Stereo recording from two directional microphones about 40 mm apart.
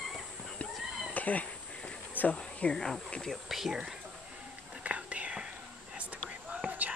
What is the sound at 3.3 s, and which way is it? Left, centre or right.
Speech, centre.